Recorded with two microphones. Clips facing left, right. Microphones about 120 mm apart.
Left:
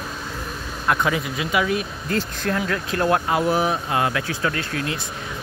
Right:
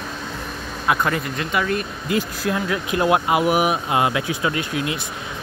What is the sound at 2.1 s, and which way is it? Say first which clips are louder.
Speech: right 2 dB; 10° right (ahead or behind).